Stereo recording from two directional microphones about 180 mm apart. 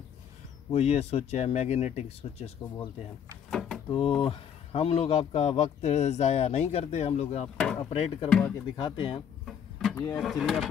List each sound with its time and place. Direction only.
0.7 s speech: 35° left (ahead or behind)
3.4 s door: centre (ahead or behind)
3.9 s speech: 30° left (ahead or behind)
7.5 s speech: 5° left (ahead or behind)
7.9 s speech: 30° left (ahead or behind)
8.3 s speech: 5° left (ahead or behind)
8.7 s speech: 25° left (ahead or behind)
9.5 s a sound: centre (ahead or behind)
10.2 s speech: centre (ahead or behind)